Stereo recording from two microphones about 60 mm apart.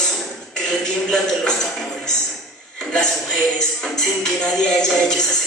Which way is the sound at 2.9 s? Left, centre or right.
Centre.